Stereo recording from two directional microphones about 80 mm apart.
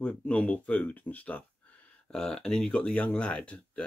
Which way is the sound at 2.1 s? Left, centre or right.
Centre.